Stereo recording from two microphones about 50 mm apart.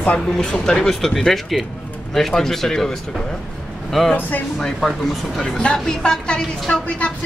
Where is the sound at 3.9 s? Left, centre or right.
Centre.